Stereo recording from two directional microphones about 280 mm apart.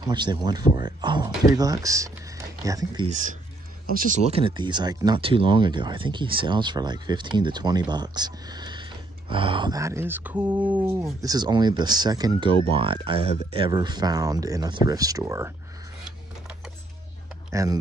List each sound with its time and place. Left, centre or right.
0.0 s speech: centre
3.1 s speech: right; by 15.5 s centre
17.5 s speech: centre